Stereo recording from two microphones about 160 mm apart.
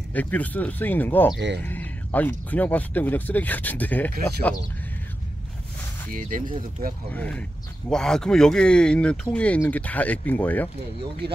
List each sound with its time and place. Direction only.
0.1 s speech: 10° left (ahead or behind)
6.1 s speech: 55° right (ahead or behind)
7.1 s speech: 10° left (ahead or behind)